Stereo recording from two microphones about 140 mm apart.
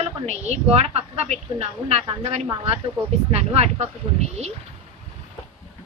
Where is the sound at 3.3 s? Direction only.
50° right (ahead or behind).